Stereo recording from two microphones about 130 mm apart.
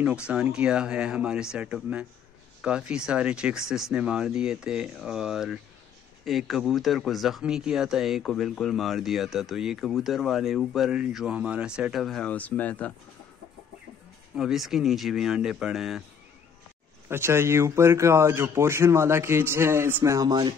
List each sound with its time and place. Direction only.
0.3 s speech: 5° right (ahead or behind); by 12.9 s 10° left (ahead or behind)
14.3 s speech: 5° right (ahead or behind)
17.1 s speech: 20° right (ahead or behind)